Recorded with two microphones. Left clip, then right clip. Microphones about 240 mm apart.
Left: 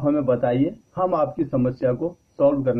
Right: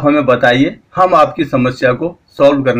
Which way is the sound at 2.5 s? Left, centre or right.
Centre.